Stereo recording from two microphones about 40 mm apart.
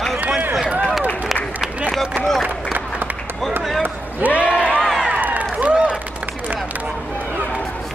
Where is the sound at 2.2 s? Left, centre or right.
Right.